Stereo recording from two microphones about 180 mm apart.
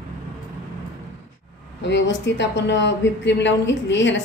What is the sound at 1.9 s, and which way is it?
A woman's voice, 90° left.